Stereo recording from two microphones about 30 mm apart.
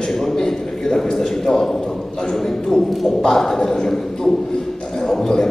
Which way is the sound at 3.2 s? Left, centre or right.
Centre.